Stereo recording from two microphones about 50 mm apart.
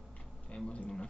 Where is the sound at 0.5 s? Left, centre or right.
Left.